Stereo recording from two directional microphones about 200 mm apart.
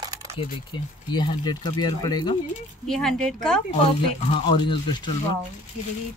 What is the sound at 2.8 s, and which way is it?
Speech, centre (ahead or behind).